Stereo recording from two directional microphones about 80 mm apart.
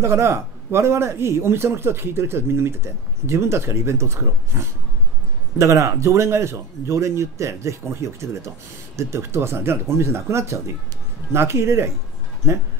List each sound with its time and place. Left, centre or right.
0.0 s a man's voice: right